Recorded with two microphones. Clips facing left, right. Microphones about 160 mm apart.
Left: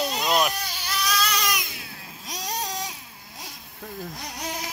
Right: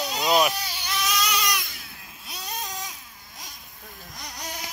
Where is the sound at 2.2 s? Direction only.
40° left (ahead or behind).